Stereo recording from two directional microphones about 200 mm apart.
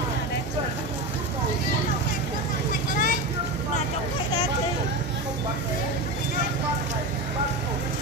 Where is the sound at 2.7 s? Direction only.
45° left (ahead or behind).